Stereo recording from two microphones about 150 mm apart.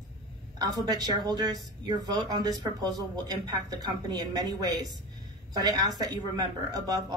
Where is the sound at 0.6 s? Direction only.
25° right (ahead or behind).